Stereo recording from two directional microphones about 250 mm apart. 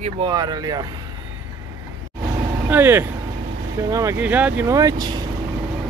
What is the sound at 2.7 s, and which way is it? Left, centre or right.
Speech, centre.